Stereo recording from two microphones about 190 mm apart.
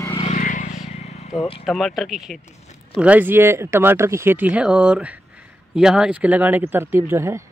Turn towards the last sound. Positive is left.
turn(degrees=-15)  # may be behind; listen again after turning